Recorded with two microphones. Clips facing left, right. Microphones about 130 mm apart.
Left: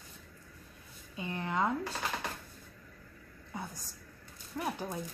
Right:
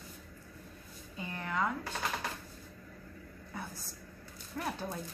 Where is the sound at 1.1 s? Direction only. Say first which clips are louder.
Left 2 dB; 20° left (ahead or behind).